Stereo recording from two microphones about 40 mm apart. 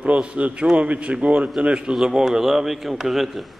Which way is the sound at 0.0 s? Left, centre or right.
Right.